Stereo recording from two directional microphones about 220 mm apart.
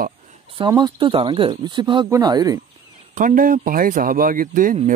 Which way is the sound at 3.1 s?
40° right (ahead or behind).